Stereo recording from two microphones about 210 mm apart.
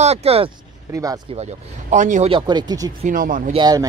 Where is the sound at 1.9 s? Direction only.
35° right (ahead or behind); by 2.9 s 20° right (ahead or behind).